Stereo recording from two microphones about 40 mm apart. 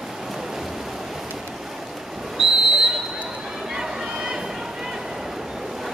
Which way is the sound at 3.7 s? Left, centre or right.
Centre.